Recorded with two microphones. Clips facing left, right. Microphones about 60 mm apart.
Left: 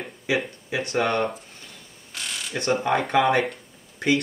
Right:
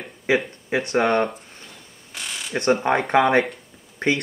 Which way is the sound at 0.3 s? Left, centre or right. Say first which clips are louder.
Right 5 dB; right.